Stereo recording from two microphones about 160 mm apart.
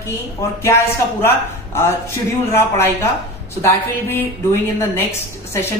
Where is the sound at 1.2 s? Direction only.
15° left (ahead or behind).